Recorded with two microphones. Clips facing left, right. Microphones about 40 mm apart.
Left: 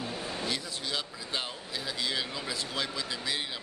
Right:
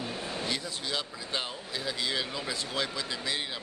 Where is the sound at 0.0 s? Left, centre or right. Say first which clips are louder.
Even; centre.